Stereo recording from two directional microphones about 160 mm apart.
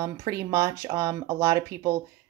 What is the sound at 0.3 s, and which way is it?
Speech, 20° right (ahead or behind).